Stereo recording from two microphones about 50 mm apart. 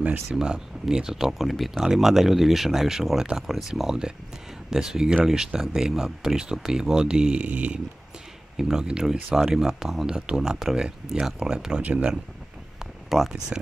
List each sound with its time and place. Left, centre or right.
0.4 s speech: centre
8.5 s speech: centre
11.8 s speech: right
12.7 s a sound: centre